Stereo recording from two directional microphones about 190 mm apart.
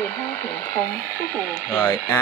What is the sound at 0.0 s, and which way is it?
Speech, 10° left (ahead or behind).